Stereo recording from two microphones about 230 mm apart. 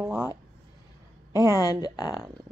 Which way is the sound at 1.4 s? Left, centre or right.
Centre.